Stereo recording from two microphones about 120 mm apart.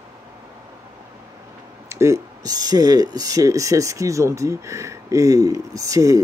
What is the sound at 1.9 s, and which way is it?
Speech, 20° right (ahead or behind).